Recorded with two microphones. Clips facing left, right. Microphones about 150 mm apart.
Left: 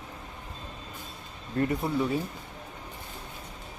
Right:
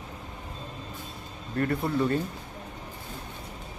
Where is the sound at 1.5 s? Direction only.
20° left (ahead or behind).